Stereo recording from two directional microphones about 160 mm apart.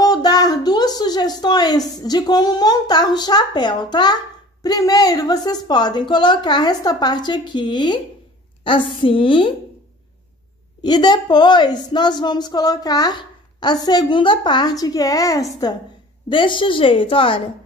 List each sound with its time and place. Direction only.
0.0 s a woman's voice: 25° left (ahead or behind)
10.8 s a woman's voice: 25° left (ahead or behind)